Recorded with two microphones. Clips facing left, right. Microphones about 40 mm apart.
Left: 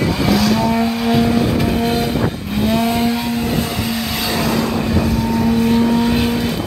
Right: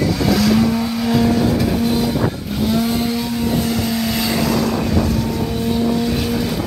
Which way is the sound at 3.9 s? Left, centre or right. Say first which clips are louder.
Right 1 dB; centre.